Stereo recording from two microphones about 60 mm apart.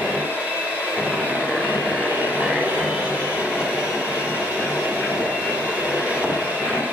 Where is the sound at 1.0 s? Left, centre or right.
Right.